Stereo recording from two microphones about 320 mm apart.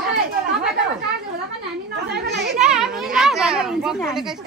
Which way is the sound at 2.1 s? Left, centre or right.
Right.